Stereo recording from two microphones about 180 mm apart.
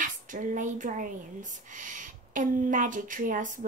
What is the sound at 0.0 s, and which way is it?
Speech, 45° right (ahead or behind).